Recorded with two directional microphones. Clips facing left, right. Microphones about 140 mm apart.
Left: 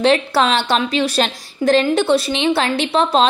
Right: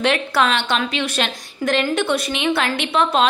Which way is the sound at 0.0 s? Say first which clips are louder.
Left 4 dB; 30° left (ahead or behind).